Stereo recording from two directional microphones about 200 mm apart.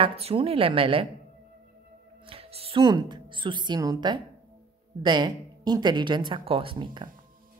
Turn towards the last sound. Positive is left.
turn(degrees=-25)  # may be behind; listen again after turning